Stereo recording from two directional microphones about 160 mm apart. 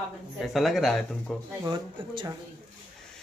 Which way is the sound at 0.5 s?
Centre (ahead or behind).